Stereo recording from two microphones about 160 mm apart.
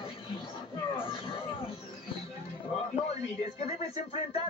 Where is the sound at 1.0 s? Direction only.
35° left (ahead or behind).